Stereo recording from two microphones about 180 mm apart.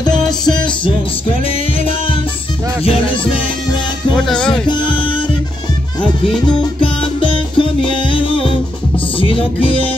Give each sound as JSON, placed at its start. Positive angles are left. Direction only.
{"t": 0.0, "sound": "music", "side_deg": 25}
{"t": 4.1, "sound": "music", "side_deg": 5}
{"t": 4.9, "sound": "music", "side_deg": 30}
{"t": 6.8, "sound": "music", "side_deg": 30}